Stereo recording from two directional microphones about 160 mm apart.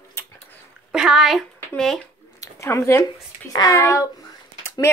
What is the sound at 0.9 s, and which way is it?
Speech, 5° right (ahead or behind).